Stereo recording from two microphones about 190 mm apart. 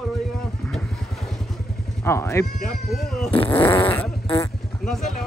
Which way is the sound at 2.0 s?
15° left (ahead or behind).